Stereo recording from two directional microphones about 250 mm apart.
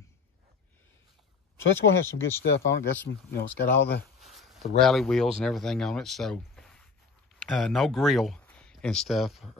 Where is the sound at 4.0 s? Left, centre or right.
Centre.